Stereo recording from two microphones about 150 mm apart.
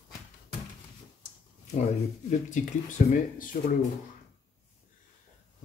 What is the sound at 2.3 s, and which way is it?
Speech, 55° left (ahead or behind).